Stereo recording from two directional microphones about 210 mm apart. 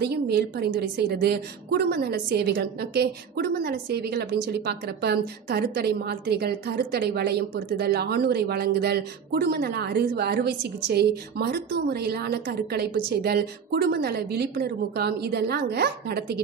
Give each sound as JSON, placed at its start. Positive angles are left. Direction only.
{"t": 0.0, "sound": "a woman's voice", "side_deg": -50}